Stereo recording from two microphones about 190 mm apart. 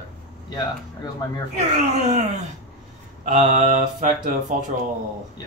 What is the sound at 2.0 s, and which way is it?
Speech, 35° right (ahead or behind).